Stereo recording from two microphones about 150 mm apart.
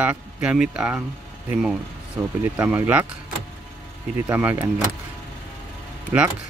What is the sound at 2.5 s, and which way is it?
Speech, 10° right (ahead or behind).